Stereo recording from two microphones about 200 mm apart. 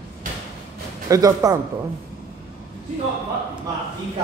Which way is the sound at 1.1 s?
15° right (ahead or behind).